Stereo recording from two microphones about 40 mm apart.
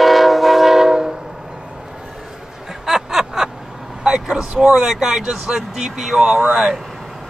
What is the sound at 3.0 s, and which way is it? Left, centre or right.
Vehicle, centre.